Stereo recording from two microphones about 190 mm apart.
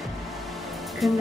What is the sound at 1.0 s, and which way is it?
Speech, centre (ahead or behind).